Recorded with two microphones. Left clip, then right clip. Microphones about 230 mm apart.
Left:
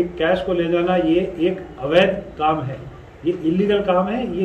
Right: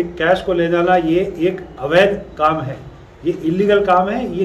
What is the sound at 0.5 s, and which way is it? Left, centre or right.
A man's voice, centre.